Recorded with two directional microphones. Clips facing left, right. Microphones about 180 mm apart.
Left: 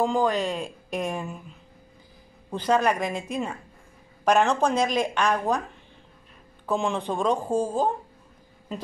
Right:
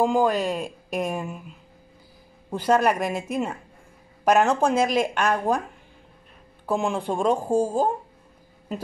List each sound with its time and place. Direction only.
0.0 s speech: 10° right (ahead or behind)
2.5 s speech: 10° right (ahead or behind)
6.6 s speech: 10° right (ahead or behind)